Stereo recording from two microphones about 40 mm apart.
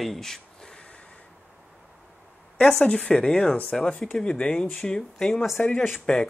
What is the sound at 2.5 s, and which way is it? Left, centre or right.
Speech, centre.